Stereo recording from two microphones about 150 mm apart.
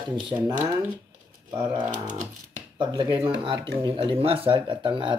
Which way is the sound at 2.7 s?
30° right (ahead or behind).